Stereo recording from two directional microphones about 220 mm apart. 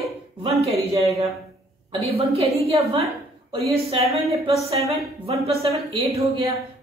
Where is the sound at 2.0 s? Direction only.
25° right (ahead or behind).